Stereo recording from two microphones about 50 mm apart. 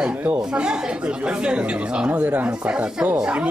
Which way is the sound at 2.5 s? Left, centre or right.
Centre.